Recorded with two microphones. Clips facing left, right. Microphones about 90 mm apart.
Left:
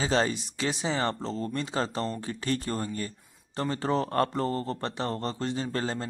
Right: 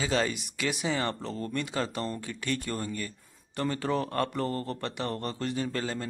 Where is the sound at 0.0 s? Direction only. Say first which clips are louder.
Left 2 dB; 30° left (ahead or behind).